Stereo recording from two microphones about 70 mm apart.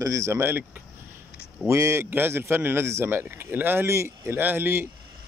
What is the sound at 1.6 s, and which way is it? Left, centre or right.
Speech, right.